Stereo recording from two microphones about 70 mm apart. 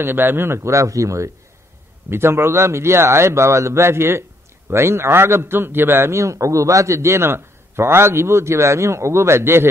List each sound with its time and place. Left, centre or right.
0.0 s a man's voice: right
2.0 s a man's voice: right